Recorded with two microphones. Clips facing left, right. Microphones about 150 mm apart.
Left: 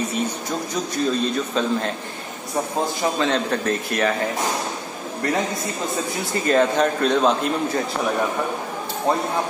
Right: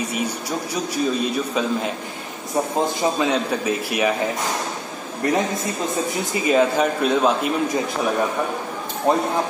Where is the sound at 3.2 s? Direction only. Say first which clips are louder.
Even; 10° right (ahead or behind).